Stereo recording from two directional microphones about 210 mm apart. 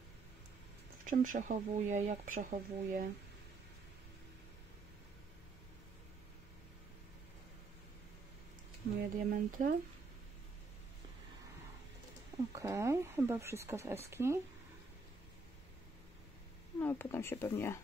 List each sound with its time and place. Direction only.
1.0 s speech: 40° right (ahead or behind)
9.1 s speech: 40° right (ahead or behind)
12.5 s speech: 15° right (ahead or behind)
16.8 s speech: 10° left (ahead or behind)